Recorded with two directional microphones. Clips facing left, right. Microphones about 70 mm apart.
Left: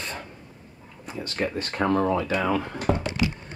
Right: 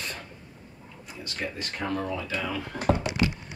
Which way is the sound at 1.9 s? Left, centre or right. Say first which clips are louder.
Left 8 dB; left.